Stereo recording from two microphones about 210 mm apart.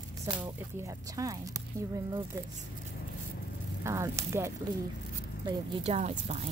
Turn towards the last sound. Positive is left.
turn(degrees=-30)  # may be behind; listen again after turning